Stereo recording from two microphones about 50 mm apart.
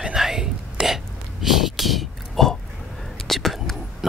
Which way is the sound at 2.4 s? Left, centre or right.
Centre.